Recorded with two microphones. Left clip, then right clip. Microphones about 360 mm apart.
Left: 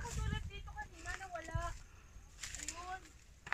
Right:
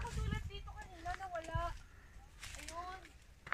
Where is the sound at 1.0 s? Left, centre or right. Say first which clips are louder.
Right 4 dB; centre.